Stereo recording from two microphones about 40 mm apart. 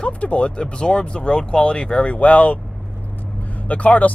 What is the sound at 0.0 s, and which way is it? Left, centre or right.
Speech, left.